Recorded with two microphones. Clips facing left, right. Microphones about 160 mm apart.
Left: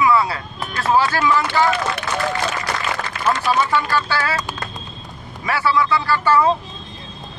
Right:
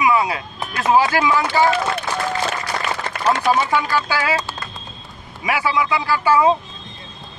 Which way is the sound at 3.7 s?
15° right (ahead or behind).